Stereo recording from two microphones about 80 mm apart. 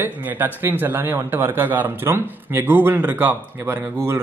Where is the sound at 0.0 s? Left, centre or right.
Right.